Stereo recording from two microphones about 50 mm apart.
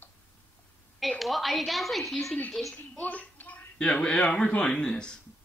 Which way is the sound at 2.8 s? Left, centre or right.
Left.